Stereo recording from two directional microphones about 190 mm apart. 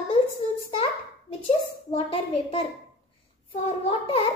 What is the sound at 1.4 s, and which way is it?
A child's voice, 30° left (ahead or behind).